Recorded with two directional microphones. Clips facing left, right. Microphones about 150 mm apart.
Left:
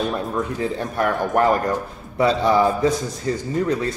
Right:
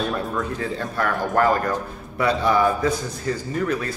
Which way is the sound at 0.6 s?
20° left (ahead or behind).